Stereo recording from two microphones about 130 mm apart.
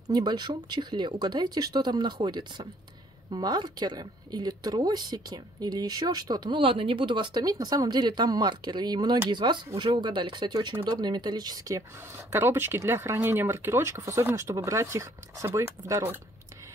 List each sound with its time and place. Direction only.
0.1 s speech: 35° right (ahead or behind)
12.3 s speech: 15° right (ahead or behind)